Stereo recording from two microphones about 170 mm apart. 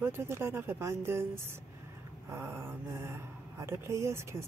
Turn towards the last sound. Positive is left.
turn(degrees=-15)  # may be behind; listen again after turning